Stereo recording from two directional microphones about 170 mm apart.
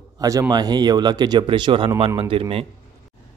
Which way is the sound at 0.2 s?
20° right (ahead or behind).